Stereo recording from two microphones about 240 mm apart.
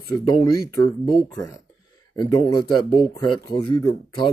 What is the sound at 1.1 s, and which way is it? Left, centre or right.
Speech, centre.